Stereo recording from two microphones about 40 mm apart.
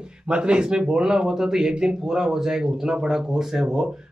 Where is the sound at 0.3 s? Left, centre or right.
Right.